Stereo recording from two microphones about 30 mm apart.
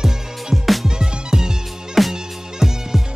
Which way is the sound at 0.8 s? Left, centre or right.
Right.